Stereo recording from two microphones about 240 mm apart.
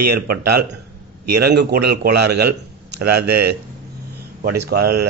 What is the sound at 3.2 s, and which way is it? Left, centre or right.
Speech, right.